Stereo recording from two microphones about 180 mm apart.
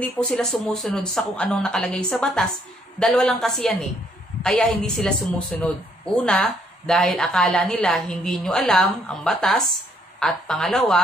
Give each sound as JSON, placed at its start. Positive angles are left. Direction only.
{"t": 0.0, "sound": "speech", "side_deg": 5}